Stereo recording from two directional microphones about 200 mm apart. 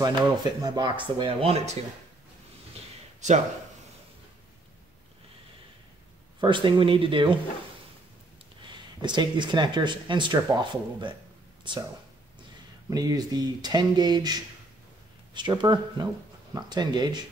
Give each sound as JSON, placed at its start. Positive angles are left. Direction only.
{"t": 0.0, "sound": "speech", "side_deg": -20}
{"t": 6.4, "sound": "speech", "side_deg": -25}
{"t": 8.6, "sound": "speech", "side_deg": -20}
{"t": 12.9, "sound": "speech", "side_deg": -20}